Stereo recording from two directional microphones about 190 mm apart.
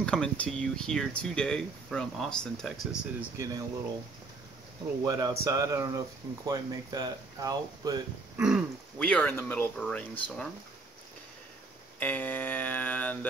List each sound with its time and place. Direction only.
0.0 s speech: 5° left (ahead or behind)
5.0 s speech: 20° right (ahead or behind)
8.4 s speech: 5° right (ahead or behind)
8.9 s speech: 5° left (ahead or behind)
12.0 s speech: 10° left (ahead or behind)